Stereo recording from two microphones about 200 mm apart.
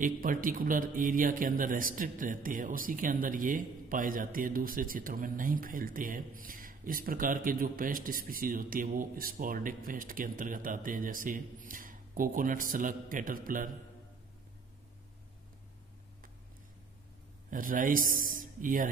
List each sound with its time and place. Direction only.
0.0 s speech: 40° right (ahead or behind)
17.5 s speech: 40° right (ahead or behind)